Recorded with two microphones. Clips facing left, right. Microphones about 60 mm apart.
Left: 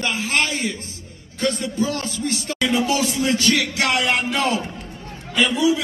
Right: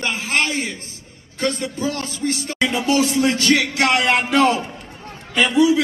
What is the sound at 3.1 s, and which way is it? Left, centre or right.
Music, right.